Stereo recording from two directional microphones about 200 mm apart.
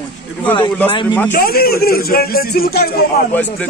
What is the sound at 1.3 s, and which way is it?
Speech, 50° left (ahead or behind).